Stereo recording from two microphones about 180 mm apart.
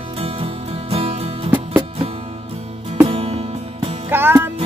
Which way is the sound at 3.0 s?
35° right (ahead or behind).